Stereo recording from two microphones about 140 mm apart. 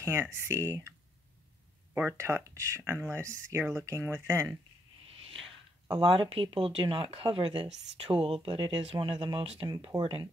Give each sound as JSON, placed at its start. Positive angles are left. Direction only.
{"t": 0.0, "sound": "speech", "side_deg": -15}
{"t": 2.0, "sound": "speech", "side_deg": -20}
{"t": 5.9, "sound": "speech", "side_deg": -35}
{"t": 9.8, "sound": "speech", "side_deg": -30}